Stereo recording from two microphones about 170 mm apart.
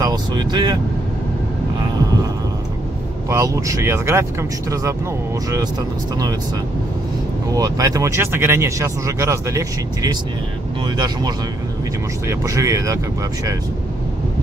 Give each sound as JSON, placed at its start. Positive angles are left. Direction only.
{"t": 0.0, "sound": "speech", "side_deg": -25}
{"t": 3.3, "sound": "speech", "side_deg": -20}
{"t": 7.5, "sound": "speech", "side_deg": -20}
{"t": 12.3, "sound": "speech", "side_deg": -20}